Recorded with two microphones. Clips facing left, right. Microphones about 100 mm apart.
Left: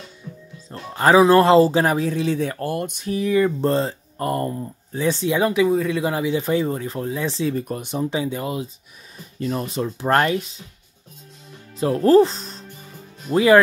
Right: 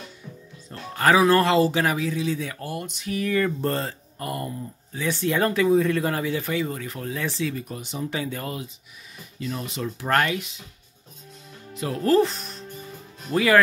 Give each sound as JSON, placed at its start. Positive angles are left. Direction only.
{"t": 0.7, "sound": "speech", "side_deg": 25}
{"t": 2.1, "sound": "speech", "side_deg": 55}
{"t": 3.1, "sound": "speech", "side_deg": 20}
{"t": 4.2, "sound": "speech", "side_deg": 40}
{"t": 5.2, "sound": "speech", "side_deg": 15}
{"t": 5.7, "sound": "speech", "side_deg": 0}
{"t": 5.9, "sound": "speech", "side_deg": 15}
{"t": 6.5, "sound": "speech", "side_deg": 30}
{"t": 7.6, "sound": "speech", "side_deg": 50}
{"t": 8.1, "sound": "speech", "side_deg": 20}
{"t": 9.4, "sound": "speech", "side_deg": 40}
{"t": 9.8, "sound": "speech", "side_deg": 25}
{"t": 11.7, "sound": "speech", "side_deg": 35}